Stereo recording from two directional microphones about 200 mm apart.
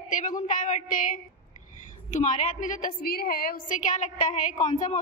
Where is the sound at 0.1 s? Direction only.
40° left (ahead or behind).